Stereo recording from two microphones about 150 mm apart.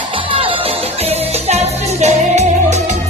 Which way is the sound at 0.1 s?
35° right (ahead or behind).